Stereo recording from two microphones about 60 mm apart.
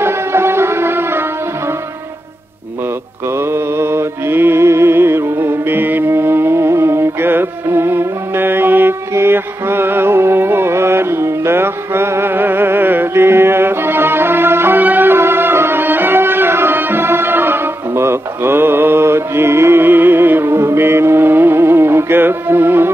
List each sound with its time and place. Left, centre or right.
0.0 s music: right
3.3 s mantra: right
9.1 s music: right